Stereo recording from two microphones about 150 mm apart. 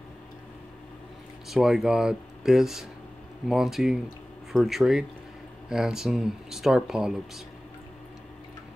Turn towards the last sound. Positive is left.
turn(degrees=-5)  # may be behind; listen again after turning